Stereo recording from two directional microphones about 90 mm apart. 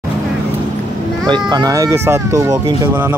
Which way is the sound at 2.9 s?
20° right (ahead or behind).